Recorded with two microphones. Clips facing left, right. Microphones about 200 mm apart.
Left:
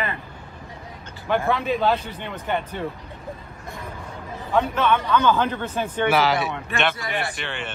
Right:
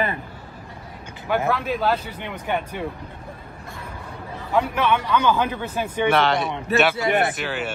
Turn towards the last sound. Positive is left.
turn(degrees=-5)  # may be behind; listen again after turning